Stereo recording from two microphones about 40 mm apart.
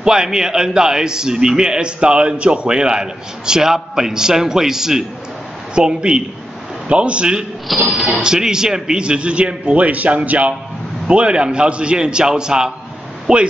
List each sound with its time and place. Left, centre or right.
0.0 s a man's voice: centre
5.8 s speech: right
7.7 s speech: centre
8.2 s speech: centre; by 10.5 s right
11.1 s speech: right